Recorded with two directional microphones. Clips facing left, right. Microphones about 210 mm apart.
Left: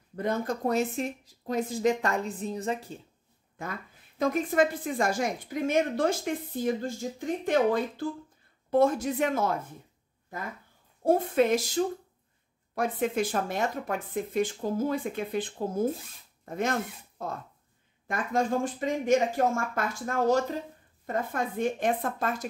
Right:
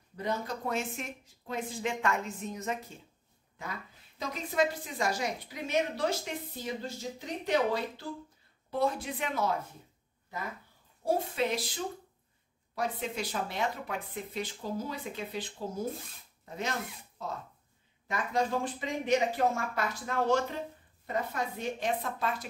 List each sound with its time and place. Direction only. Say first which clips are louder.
0.1 s speech: left 5 dB; 50° left (ahead or behind); by 3.0 s 30° left (ahead or behind)
4.2 s a woman's voice: left 6 dB; 50° left (ahead or behind)
11.1 s a woman's voice: left 7 dB; 50° left (ahead or behind)
21.1 s a woman's voice: left 3 dB; 50° left (ahead or behind)